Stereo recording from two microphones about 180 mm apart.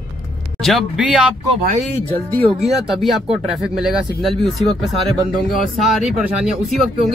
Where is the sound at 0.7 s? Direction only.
Centre (ahead or behind).